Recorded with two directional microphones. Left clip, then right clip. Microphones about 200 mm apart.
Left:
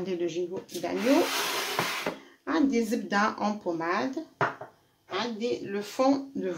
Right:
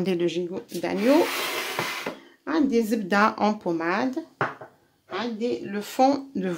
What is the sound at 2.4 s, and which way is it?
Speech, 45° right (ahead or behind).